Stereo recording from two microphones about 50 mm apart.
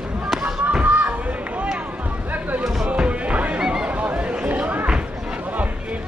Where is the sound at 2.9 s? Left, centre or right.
Right.